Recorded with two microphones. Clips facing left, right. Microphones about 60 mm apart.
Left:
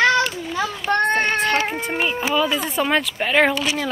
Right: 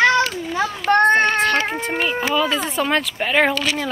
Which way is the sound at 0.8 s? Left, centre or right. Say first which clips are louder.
Right 5 dB; right.